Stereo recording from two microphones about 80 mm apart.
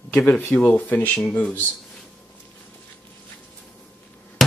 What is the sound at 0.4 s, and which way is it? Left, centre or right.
Speech, left.